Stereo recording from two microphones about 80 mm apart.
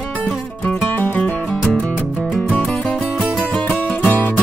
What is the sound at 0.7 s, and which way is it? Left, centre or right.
Music, left.